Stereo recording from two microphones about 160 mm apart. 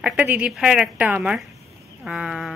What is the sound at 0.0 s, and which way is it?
A woman's voice, 10° right (ahead or behind).